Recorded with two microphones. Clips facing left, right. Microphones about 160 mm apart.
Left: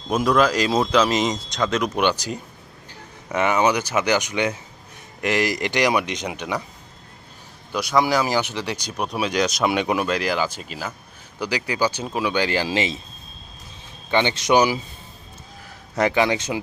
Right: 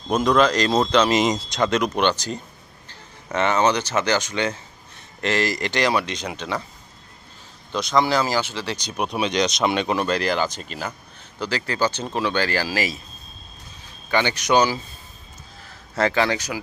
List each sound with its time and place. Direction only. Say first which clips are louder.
0.1 s speech: right 1 dB; 5° left (ahead or behind)
7.7 s speech: even; 10° left (ahead or behind)
8.9 s speech: right 1 dB; centre (ahead or behind); by 13.0 s 25° left (ahead or behind)
14.1 s speech: left 1 dB; 20° left (ahead or behind)
15.9 s speech: left 1 dB; 15° left (ahead or behind)